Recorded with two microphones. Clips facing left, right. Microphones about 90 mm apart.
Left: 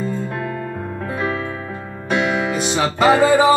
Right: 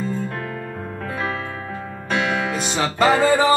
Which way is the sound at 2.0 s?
5° left (ahead or behind).